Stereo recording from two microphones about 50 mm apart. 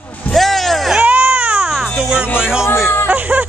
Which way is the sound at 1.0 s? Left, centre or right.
Right.